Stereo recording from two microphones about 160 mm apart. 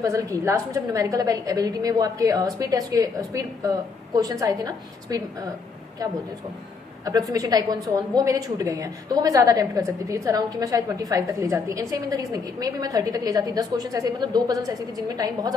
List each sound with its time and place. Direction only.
0.0 s a woman's voice: 20° right (ahead or behind)
7.1 s a woman's voice: 20° right (ahead or behind)